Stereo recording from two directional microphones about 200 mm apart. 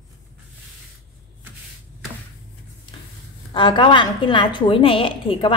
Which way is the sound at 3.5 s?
25° left (ahead or behind).